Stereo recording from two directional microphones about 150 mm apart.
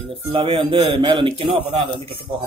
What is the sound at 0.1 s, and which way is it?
Speech, 40° right (ahead or behind).